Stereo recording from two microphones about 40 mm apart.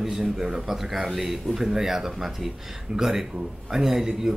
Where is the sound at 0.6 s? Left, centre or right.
Centre.